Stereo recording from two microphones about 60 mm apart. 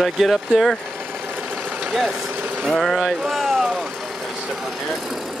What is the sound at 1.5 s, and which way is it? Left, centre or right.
Vehicle, right.